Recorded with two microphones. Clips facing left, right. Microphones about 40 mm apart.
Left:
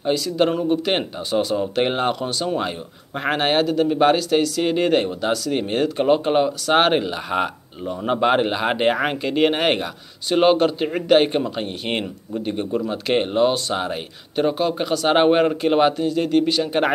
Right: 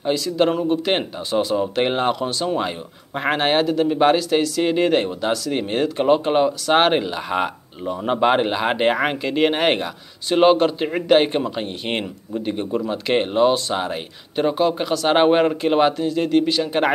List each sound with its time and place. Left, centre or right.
0.0 s speech: centre